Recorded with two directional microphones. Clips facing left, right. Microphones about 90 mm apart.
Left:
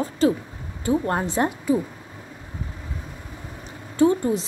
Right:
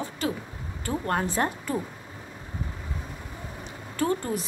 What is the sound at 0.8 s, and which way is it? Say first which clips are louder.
Speech: left 5 dB; 15° left (ahead or behind).